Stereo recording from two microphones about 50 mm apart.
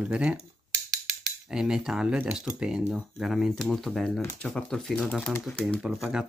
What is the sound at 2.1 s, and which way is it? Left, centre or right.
Speech, right.